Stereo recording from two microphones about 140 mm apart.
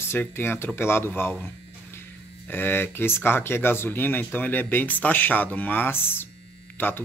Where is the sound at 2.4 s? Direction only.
15° left (ahead or behind).